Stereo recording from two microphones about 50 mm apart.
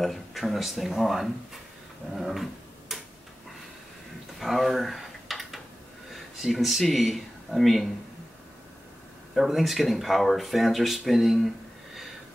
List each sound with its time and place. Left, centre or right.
0.0 s speech: centre
2.9 s tick-tock: centre
4.4 s a sound: centre
6.1 s speech: centre
9.3 s speech: centre